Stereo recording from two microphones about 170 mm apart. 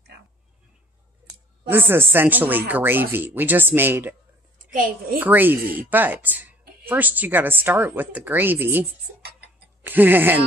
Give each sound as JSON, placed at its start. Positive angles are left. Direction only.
{"t": 1.7, "sound": "speech", "side_deg": -10}
{"t": 4.7, "sound": "a woman's voice", "side_deg": -50}
{"t": 5.2, "sound": "speech", "side_deg": -10}
{"t": 9.8, "sound": "speech", "side_deg": -10}